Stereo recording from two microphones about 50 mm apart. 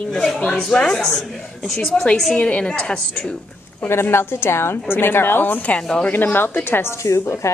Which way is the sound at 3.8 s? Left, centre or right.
Left.